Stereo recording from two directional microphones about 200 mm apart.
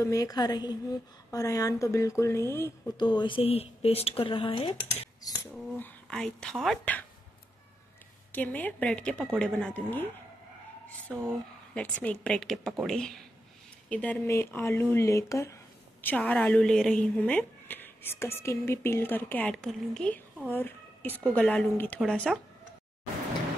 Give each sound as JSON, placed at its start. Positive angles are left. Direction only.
{"t": 0.0, "sound": "speech", "side_deg": 15}
{"t": 5.5, "sound": "speech", "side_deg": 5}
{"t": 8.3, "sound": "speech", "side_deg": 10}
{"t": 11.1, "sound": "a woman's voice", "side_deg": 0}